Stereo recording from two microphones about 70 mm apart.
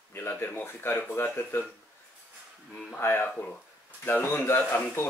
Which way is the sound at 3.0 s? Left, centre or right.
Left.